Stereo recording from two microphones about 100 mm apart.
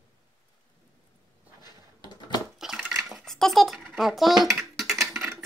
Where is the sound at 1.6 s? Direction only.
45° left (ahead or behind).